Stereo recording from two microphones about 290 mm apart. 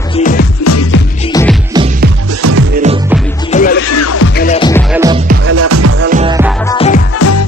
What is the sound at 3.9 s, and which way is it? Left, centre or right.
Music, left.